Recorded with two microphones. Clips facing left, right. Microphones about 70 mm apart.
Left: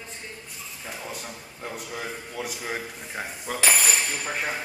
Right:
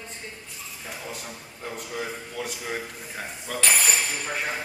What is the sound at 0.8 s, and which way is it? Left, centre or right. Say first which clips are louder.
A man's voice: left 1 dB; centre.